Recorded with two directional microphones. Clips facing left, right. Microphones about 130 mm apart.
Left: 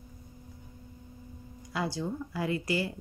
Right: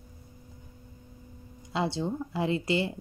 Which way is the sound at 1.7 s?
25° right (ahead or behind).